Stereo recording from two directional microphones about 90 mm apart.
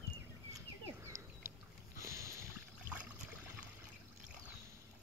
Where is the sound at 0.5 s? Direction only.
35° right (ahead or behind).